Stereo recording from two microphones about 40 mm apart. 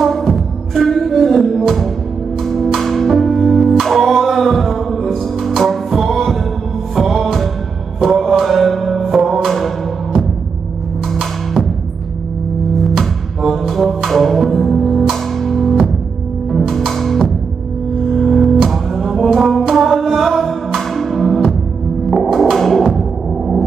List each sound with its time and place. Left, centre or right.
0.0 s music: centre
11.1 s music: centre
13.4 s music: centre
16.9 s music: centre
23.3 s music: centre